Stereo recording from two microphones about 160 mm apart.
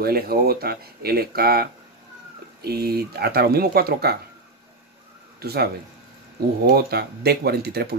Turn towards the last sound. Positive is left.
turn(degrees=-85)